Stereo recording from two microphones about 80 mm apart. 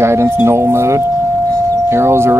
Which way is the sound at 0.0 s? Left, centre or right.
Right.